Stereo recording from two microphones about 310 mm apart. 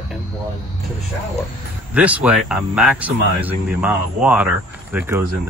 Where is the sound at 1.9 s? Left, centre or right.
Centre.